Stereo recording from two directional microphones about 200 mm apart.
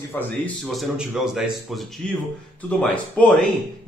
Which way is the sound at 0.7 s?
Centre (ahead or behind).